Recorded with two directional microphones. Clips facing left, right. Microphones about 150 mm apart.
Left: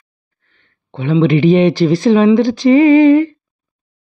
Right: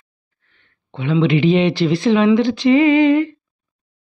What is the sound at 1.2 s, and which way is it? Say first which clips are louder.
Speech: left 4 dB; 45° left (ahead or behind).